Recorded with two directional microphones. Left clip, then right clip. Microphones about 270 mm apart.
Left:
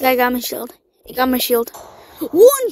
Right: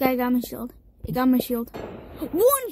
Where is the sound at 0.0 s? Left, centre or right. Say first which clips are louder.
Left 8 dB; left.